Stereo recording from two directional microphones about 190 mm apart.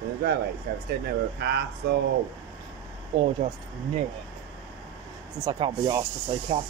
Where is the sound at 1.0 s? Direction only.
60° right (ahead or behind).